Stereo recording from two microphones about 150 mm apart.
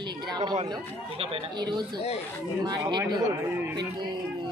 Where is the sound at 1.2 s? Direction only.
30° right (ahead or behind).